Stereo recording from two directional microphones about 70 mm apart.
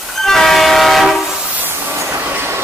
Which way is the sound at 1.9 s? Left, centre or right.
Right.